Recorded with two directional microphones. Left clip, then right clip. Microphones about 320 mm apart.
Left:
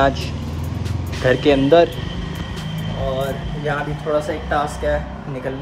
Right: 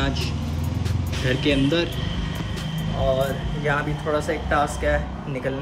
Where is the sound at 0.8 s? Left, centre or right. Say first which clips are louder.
Left 9 dB; centre.